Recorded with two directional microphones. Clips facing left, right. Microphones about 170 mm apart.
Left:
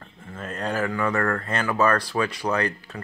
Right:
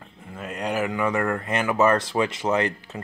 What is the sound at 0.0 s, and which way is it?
Speech, 10° right (ahead or behind).